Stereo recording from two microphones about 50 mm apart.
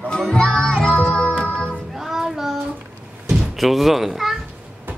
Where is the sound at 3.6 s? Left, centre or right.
Centre.